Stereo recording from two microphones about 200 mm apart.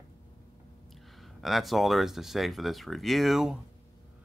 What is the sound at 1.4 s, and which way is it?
Speech, centre (ahead or behind).